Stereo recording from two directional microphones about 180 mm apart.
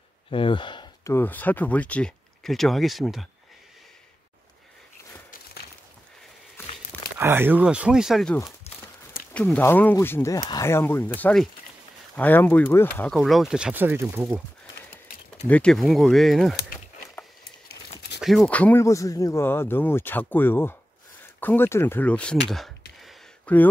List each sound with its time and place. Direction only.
0.3 s a sound: 30° left (ahead or behind)
1.1 s speech: 10° left (ahead or behind)
7.2 s speech: 10° right (ahead or behind)
15.4 s speech: 5° left (ahead or behind)
18.2 s speech: centre (ahead or behind)
22.9 s a sound: 5° left (ahead or behind)